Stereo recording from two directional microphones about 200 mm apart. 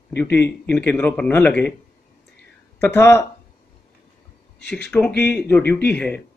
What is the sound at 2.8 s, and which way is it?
Speech, 10° left (ahead or behind).